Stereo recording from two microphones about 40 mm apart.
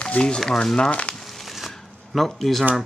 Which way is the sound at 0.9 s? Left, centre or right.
Left.